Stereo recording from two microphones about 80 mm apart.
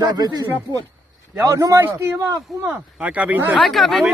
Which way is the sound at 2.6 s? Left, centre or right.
Centre.